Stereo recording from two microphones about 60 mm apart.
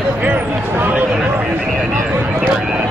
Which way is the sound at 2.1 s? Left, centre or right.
Right.